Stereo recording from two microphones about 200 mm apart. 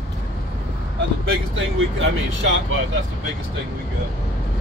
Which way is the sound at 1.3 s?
75° right (ahead or behind).